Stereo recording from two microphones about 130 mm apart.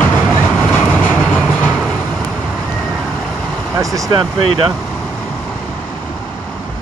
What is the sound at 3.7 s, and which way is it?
Speech, 25° right (ahead or behind).